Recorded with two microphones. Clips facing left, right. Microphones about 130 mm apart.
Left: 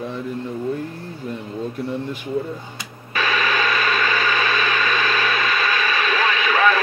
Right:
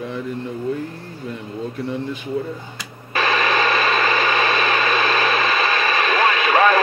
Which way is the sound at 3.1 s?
35° right (ahead or behind).